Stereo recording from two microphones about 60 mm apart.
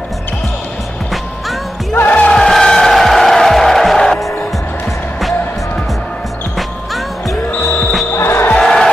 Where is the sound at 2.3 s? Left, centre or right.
Centre.